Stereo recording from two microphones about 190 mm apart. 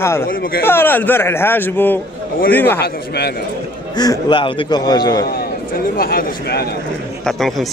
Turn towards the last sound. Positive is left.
turn(degrees=0)  # may be behind; listen again after turning